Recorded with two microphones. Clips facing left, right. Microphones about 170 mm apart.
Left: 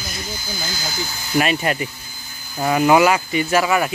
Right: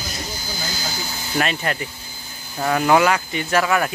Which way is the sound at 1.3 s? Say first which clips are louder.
Left 4 dB; 10° left (ahead or behind).